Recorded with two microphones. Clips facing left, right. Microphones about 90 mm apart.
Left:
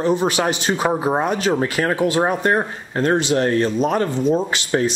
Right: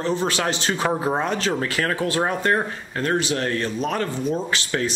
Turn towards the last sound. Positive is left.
turn(degrees=20)  # may be behind; listen again after turning